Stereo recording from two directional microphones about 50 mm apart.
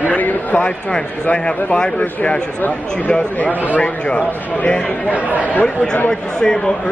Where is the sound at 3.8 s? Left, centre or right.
Left.